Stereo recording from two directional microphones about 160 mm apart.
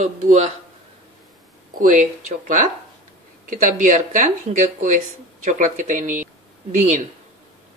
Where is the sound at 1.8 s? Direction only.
50° right (ahead or behind).